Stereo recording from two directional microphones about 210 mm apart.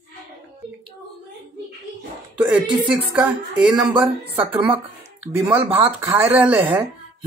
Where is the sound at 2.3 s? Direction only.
5° right (ahead or behind).